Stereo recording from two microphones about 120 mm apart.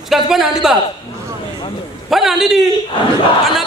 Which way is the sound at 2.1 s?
Centre (ahead or behind).